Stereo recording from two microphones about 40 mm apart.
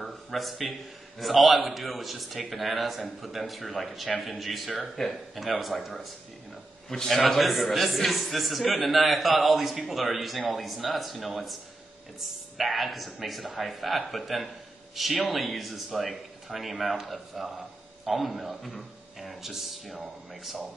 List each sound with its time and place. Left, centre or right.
0.0 s a man's voice: centre